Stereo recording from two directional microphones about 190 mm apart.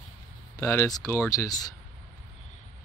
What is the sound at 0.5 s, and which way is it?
Speech, 15° left (ahead or behind).